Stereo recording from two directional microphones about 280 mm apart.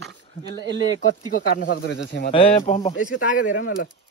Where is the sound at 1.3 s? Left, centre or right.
Left.